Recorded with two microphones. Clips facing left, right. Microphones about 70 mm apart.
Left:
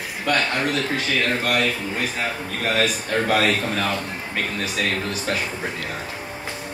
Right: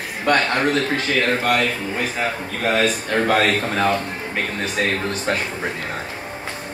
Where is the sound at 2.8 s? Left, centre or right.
Right.